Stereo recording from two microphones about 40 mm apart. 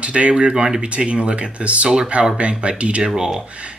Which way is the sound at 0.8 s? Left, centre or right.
Right.